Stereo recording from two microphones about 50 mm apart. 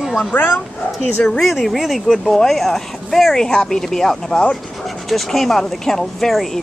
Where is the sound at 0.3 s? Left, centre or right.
Left.